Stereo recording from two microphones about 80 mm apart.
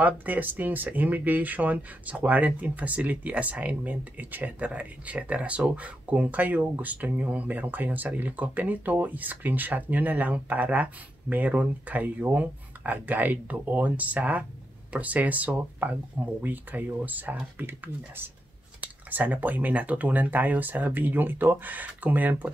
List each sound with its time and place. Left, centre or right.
0.0 s speech: right